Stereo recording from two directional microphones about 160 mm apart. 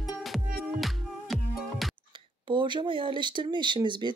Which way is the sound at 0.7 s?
Centre (ahead or behind).